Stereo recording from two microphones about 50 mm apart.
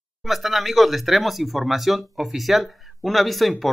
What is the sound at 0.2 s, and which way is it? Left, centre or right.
Speech, centre.